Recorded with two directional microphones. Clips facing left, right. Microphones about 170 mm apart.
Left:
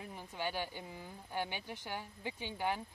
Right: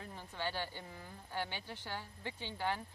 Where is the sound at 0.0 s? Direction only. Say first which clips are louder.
Left 1 dB; 15° left (ahead or behind).